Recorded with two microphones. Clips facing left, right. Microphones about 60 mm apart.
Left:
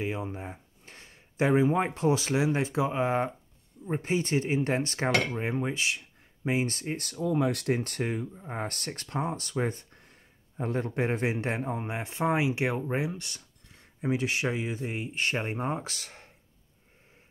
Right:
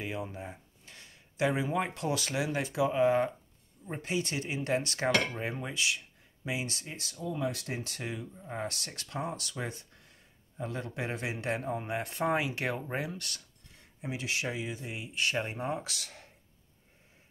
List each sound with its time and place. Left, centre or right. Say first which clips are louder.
0.0 s speech: left 4 dB; left
11.7 s speech: even; centre
14.0 s speech: left 6 dB; left